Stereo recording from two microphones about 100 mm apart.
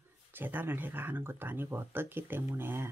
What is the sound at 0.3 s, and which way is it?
Speech, 20° right (ahead or behind).